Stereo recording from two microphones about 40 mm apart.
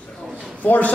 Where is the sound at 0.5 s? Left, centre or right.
Left.